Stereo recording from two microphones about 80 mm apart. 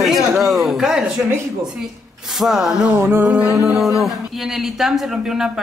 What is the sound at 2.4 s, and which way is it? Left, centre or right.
Speech, centre.